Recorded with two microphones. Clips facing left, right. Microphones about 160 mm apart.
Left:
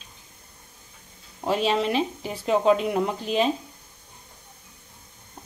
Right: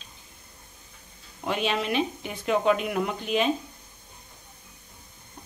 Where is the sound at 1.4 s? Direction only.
30° left (ahead or behind).